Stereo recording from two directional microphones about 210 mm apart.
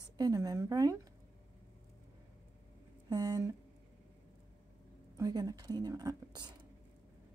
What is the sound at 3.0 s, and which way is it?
Speech, 15° right (ahead or behind).